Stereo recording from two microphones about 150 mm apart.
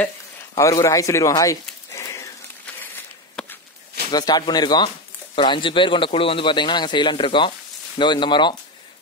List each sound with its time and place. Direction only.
0.6 s speech: 20° left (ahead or behind)
4.1 s speech: 25° left (ahead or behind)